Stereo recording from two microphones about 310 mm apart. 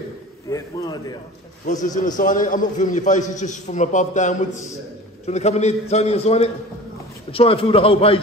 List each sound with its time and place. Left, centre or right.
0.5 s a man's voice: centre
2.0 s a man's voice: left